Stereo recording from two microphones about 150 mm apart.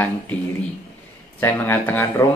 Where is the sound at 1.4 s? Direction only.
15° left (ahead or behind).